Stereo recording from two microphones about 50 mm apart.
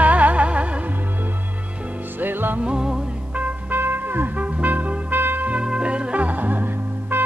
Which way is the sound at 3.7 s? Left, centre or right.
Right.